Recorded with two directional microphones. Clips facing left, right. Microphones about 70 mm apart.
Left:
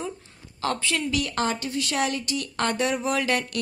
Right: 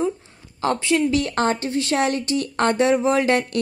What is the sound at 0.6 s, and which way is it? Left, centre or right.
Speech, right.